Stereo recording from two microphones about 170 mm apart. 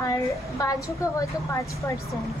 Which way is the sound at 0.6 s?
20° left (ahead or behind).